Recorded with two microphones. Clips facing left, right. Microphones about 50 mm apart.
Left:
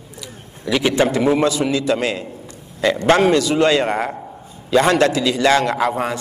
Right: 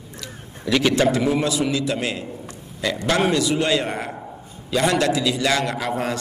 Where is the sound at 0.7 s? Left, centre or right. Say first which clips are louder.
Left 1 dB; centre.